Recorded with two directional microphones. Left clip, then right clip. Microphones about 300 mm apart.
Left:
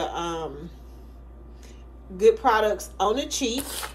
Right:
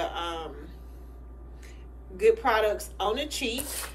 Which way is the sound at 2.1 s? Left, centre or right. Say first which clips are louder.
Left 4 dB; centre.